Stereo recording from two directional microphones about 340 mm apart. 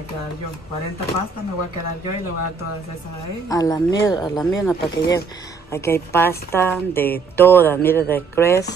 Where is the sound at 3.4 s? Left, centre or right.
Centre.